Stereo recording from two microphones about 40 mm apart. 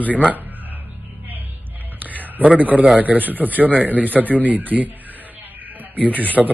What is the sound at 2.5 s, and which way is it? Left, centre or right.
Speech, right.